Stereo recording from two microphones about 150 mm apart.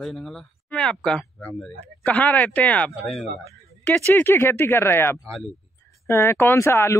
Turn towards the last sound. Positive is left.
turn(degrees=15)  # may be behind; listen again after turning